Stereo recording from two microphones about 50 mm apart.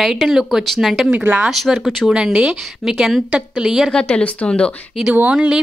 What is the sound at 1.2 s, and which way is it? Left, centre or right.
Speech, right.